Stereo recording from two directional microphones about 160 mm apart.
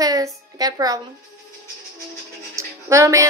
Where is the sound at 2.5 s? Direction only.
20° right (ahead or behind).